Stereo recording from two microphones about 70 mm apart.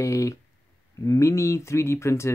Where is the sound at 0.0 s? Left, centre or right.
Left.